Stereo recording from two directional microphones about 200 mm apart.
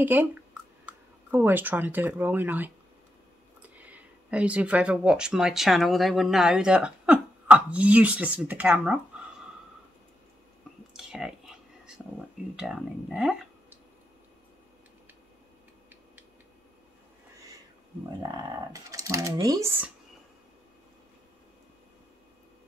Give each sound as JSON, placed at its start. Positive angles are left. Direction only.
{"t": 0.0, "sound": "speech", "side_deg": -10}
{"t": 11.0, "sound": "a sound", "side_deg": -5}
{"t": 12.5, "sound": "speech", "side_deg": -5}
{"t": 18.0, "sound": "speech", "side_deg": -20}